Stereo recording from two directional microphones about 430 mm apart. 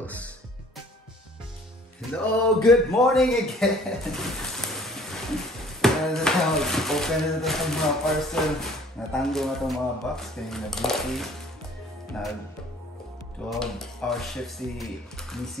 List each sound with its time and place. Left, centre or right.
0.0 s music: centre
2.0 s speech: centre
13.5 s speech: centre